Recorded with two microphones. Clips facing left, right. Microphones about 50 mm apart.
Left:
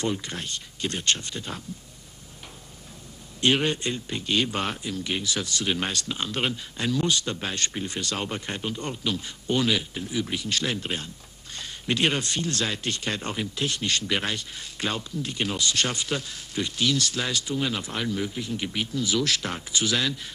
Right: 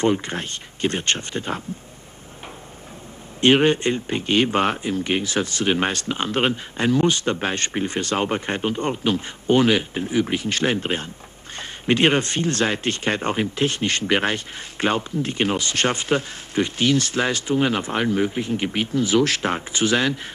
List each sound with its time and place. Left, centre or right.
0.0 s speech: right
3.3 s speech: right